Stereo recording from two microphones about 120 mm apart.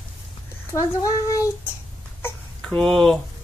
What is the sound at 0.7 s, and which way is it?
Speech, 25° left (ahead or behind).